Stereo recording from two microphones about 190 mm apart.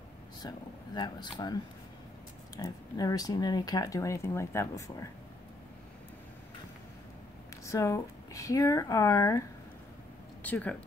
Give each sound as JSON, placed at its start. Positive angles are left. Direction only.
{"t": 0.4, "sound": "speech", "side_deg": 20}
{"t": 7.6, "sound": "speech", "side_deg": 15}
{"t": 10.4, "sound": "speech", "side_deg": 10}